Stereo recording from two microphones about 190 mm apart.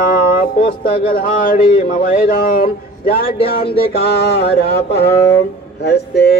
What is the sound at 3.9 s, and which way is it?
Speech, 55° left (ahead or behind).